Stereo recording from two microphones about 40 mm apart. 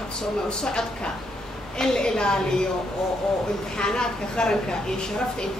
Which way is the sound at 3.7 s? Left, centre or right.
Centre.